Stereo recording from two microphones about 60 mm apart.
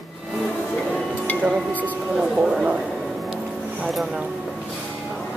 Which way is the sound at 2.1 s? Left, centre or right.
Centre.